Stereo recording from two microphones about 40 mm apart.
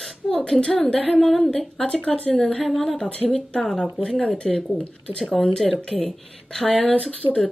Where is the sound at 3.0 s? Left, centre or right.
Left.